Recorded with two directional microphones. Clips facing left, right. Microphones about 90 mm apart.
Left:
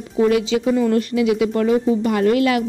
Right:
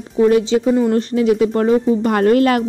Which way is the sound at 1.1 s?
40° right (ahead or behind).